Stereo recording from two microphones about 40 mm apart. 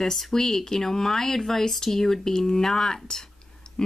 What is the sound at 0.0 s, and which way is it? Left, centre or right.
Speech, centre.